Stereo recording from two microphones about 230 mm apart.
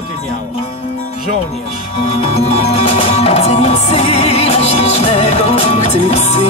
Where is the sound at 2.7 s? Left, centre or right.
Left.